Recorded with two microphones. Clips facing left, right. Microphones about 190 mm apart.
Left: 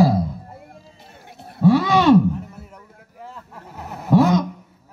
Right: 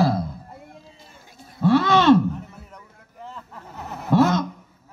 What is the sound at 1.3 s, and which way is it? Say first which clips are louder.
Roaring cats: left 5 dB; 65° left (ahead or behind).